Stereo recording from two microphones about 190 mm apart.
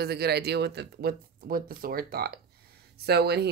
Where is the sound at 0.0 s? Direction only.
55° right (ahead or behind).